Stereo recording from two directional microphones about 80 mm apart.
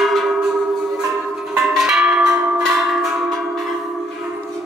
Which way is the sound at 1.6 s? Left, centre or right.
Centre.